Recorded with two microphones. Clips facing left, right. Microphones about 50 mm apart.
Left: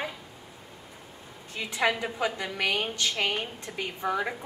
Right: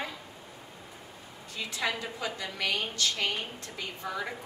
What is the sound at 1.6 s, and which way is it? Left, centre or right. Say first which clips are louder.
A woman's voice: left 6 dB; left.